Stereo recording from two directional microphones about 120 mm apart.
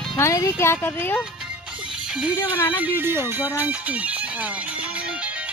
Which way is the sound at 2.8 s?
15° right (ahead or behind).